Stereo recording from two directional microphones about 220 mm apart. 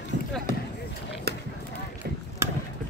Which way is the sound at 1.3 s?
45° right (ahead or behind).